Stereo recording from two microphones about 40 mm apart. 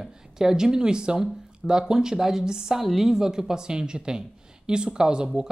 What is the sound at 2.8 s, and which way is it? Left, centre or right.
Speech, centre.